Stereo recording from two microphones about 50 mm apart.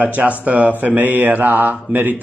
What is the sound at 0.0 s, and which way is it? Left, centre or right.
Speech, right.